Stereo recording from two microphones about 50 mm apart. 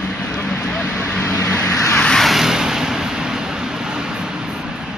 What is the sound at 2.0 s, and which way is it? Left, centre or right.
Vehicle, centre.